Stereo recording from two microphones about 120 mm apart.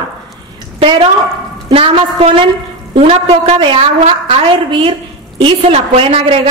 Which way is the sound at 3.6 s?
45° right (ahead or behind).